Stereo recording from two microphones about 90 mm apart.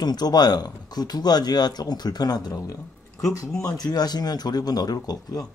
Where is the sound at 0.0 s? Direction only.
50° left (ahead or behind).